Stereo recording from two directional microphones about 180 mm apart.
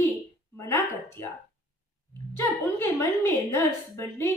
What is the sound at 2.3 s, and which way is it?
A woman's voice, 15° left (ahead or behind).